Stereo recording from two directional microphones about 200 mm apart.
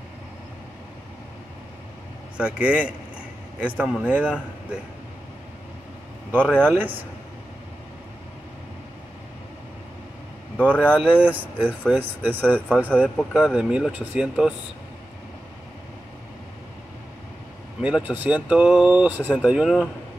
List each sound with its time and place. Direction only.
2.3 s speech: 5° right (ahead or behind)
6.4 s speech: 5° left (ahead or behind)
10.6 s speech: 10° left (ahead or behind)
10.9 s speech: 5° right (ahead or behind)
12.6 s speech: 5° left (ahead or behind)
17.8 s speech: 5° right (ahead or behind)